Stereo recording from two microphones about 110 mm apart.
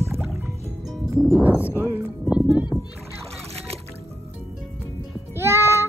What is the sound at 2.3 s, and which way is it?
Music, 5° right (ahead or behind).